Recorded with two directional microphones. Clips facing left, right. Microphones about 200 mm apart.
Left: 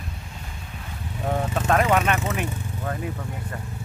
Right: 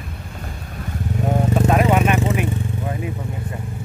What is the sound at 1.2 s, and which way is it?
Vehicle, 20° right (ahead or behind).